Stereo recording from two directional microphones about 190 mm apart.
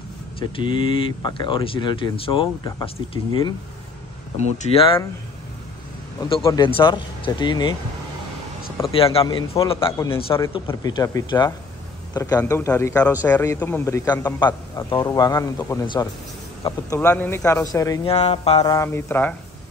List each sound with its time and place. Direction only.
0.4 s speech: 25° left (ahead or behind)
4.4 s speech: 35° left (ahead or behind)
6.4 s speech: 20° left (ahead or behind)
8.9 s a man's voice: 30° left (ahead or behind)
18.0 s speech: 30° left (ahead or behind)
18.7 s a man's voice: 15° left (ahead or behind)